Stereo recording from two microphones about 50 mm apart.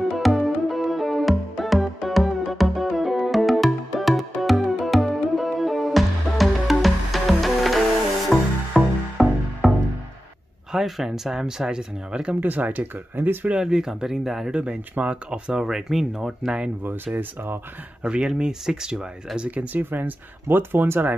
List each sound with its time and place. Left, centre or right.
0.1 s music: centre
10.7 s speech: centre
12.4 s speech: right
13.6 s speech: centre
14.5 s speech: centre
16.8 s speech: right
18.0 s speech: centre
19.5 s speech: right